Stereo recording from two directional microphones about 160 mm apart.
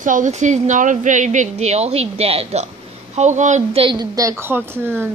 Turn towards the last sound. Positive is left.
turn(degrees=-15)  # may be behind; listen again after turning